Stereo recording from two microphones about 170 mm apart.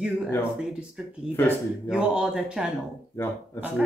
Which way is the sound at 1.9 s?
5° right (ahead or behind).